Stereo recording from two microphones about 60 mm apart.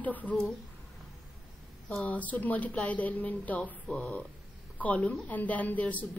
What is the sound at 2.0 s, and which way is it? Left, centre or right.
Speech, left.